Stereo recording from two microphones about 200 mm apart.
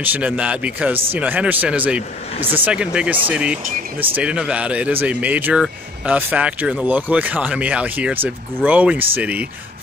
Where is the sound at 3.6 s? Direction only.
45° right (ahead or behind).